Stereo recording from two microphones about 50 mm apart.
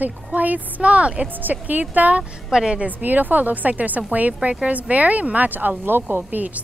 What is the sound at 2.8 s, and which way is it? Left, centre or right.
Speech, right.